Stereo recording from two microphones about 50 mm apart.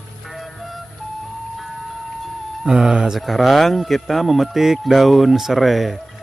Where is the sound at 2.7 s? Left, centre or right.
Centre.